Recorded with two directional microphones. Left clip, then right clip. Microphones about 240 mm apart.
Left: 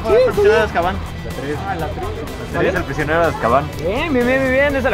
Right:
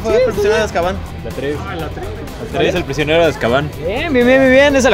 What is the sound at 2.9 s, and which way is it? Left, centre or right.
Speech, right.